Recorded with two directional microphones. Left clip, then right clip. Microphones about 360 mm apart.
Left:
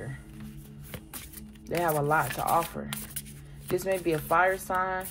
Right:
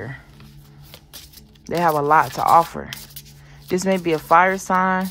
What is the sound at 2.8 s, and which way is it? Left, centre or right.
Speech, right.